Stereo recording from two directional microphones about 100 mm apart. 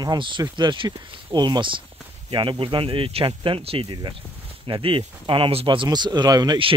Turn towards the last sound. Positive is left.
turn(degrees=-40)  # may be behind; listen again after turning